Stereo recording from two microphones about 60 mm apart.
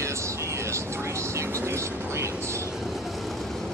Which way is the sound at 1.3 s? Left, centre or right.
Right.